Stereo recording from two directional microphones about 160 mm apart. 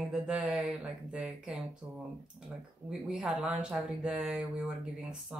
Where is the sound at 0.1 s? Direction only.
5° right (ahead or behind).